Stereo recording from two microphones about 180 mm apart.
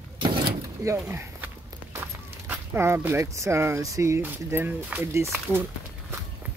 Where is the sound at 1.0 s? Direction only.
15° right (ahead or behind).